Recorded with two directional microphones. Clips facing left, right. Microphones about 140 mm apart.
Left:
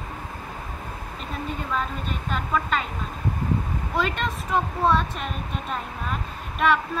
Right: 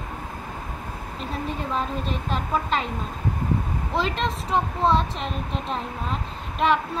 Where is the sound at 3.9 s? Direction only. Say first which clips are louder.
Right 1 dB; 30° right (ahead or behind).